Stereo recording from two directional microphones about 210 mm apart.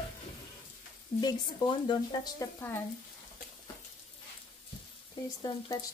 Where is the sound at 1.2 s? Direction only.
20° left (ahead or behind).